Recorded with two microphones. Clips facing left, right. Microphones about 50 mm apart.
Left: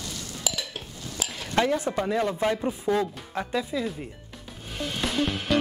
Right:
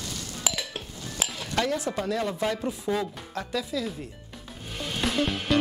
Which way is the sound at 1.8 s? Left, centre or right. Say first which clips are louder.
Left 2 dB; left.